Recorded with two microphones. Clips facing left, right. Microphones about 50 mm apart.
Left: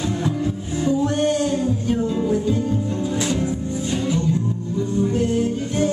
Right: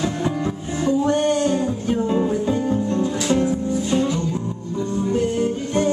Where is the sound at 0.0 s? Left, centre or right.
Centre.